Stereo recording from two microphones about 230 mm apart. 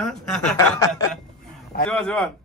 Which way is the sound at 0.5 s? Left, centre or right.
Centre.